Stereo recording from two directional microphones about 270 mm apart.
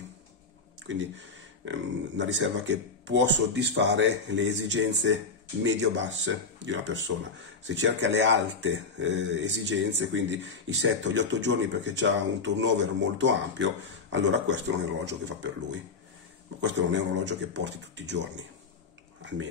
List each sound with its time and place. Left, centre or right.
0.8 s speech: right
16.6 s speech: right